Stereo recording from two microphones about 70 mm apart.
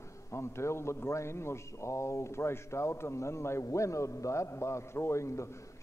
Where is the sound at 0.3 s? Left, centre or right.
Left.